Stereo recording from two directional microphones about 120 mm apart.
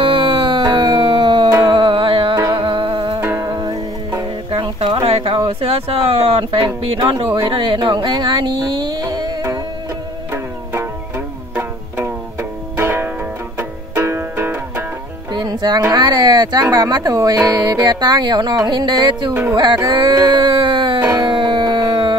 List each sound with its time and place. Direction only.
0.0 s music: 45° right (ahead or behind)
2.3 s music: 30° right (ahead or behind)
3.2 s music: 25° right (ahead or behind)
4.5 s a sound: 50° right (ahead or behind)
7.0 s music: 35° right (ahead or behind)
7.4 s speech: 45° right (ahead or behind)
10.3 s music: 20° right (ahead or behind)
15.3 s music: 35° right (ahead or behind)
19.5 s speech: 35° right (ahead or behind)
21.0 s howl: 25° right (ahead or behind)
21.3 s howl: 40° right (ahead or behind)